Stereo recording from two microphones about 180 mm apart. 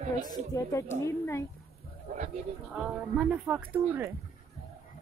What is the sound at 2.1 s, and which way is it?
Speech, 45° right (ahead or behind).